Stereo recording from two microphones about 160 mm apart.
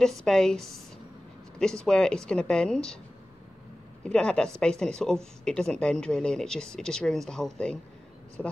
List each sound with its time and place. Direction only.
0.0 s speech: 5° left (ahead or behind)
4.0 s speech: 5° left (ahead or behind)